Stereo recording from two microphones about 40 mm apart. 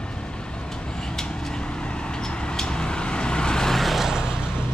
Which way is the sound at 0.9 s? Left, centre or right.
Centre.